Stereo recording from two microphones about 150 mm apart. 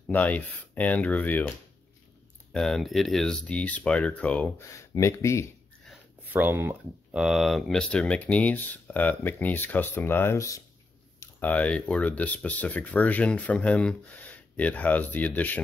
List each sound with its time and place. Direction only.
0.1 s speech: 10° left (ahead or behind)
2.5 s speech: centre (ahead or behind)
4.7 s speech: 20° left (ahead or behind)
6.2 s speech: 10° right (ahead or behind); by 15.6 s 10° left (ahead or behind)